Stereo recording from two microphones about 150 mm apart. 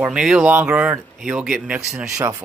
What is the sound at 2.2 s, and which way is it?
Speech, 20° right (ahead or behind).